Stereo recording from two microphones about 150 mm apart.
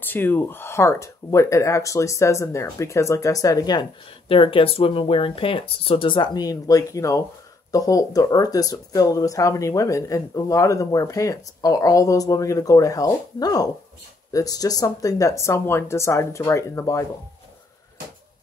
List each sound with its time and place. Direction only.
0.0 s speech: 15° left (ahead or behind)